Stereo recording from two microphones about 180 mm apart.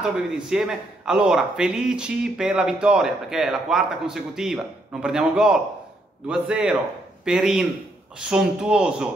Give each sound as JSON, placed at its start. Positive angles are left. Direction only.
{"t": 0.0, "sound": "a man's voice", "side_deg": -5}